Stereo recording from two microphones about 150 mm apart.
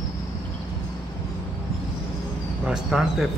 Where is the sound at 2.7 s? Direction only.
5° right (ahead or behind).